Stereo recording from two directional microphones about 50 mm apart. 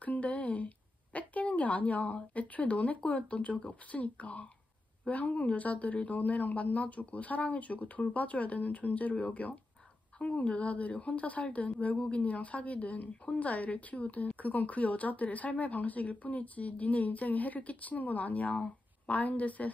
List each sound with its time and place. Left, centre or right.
0.0 s a woman's voice: left